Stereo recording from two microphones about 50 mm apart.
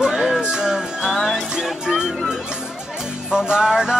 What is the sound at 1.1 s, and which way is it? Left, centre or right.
Music, centre.